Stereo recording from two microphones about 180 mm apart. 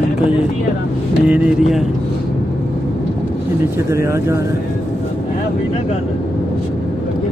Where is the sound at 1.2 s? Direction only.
5° right (ahead or behind).